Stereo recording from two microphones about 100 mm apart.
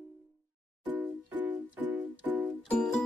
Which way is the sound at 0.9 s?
20° right (ahead or behind).